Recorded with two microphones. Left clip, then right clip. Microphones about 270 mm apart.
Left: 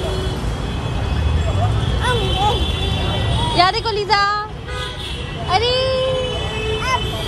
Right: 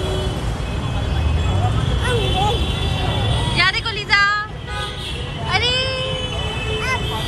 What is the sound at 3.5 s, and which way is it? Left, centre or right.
Speech, centre.